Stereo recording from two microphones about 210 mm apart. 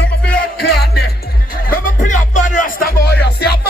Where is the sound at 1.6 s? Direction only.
40° left (ahead or behind).